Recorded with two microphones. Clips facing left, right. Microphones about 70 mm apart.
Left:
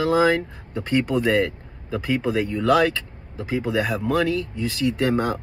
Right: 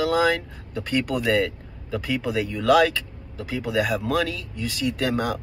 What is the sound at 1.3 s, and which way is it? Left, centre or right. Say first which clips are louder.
Vehicle: left 1 dB; centre.